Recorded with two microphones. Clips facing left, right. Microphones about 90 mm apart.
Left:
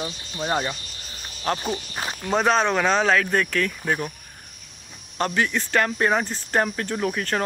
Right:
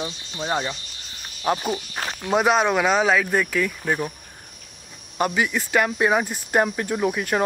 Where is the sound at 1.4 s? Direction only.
15° right (ahead or behind).